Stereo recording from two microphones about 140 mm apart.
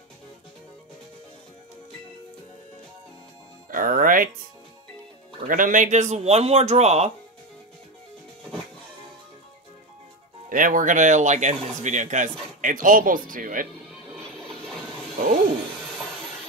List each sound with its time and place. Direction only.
3.7 s speech: 85° right
5.5 s a man's voice: 70° right (ahead or behind); by 7.1 s 50° right (ahead or behind)
10.5 s speech: 75° right (ahead or behind)